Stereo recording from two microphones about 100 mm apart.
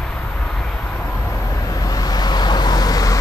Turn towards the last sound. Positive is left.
turn(degrees=40)  # may be behind; listen again after turning